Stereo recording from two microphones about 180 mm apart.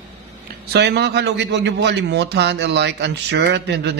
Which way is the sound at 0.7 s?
65° right (ahead or behind).